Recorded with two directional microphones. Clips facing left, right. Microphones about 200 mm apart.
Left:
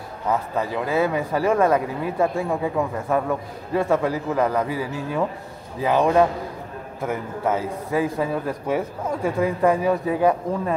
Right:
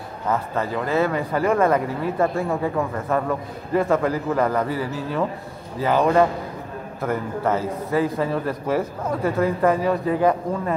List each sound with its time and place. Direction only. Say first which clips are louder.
0.3 s speech: even; 10° left (ahead or behind)
5.9 s a man's voice: even; centre (ahead or behind)